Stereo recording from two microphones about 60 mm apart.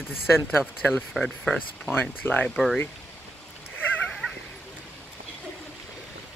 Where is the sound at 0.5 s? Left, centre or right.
Left.